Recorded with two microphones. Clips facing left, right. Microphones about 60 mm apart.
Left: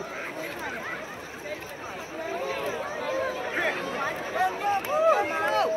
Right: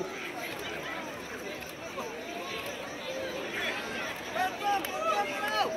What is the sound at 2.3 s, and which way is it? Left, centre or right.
Chatter, left.